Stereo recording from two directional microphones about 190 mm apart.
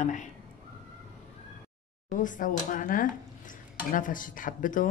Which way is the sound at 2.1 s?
45° left (ahead or behind).